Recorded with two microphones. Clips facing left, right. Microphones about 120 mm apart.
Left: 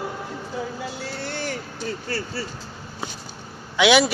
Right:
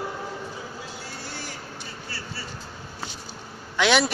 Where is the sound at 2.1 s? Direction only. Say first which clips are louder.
Left 7 dB; 45° left (ahead or behind).